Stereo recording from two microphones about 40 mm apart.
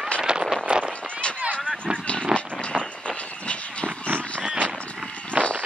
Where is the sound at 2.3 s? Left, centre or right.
Centre.